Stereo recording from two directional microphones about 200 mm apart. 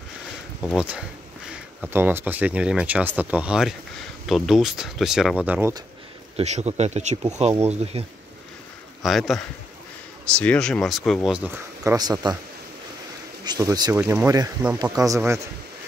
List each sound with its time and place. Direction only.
0.7 s speech: 5° right (ahead or behind)
6.3 s speech: 35° right (ahead or behind)
9.0 s speech: centre (ahead or behind)
11.8 s speech: 15° right (ahead or behind)
13.5 s speech: 20° right (ahead or behind)